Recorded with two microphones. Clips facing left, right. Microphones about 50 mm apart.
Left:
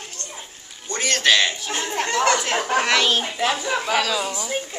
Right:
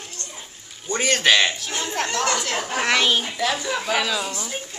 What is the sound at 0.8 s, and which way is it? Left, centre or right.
Speech, centre.